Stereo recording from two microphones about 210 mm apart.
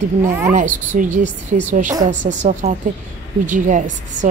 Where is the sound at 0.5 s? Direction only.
40° right (ahead or behind).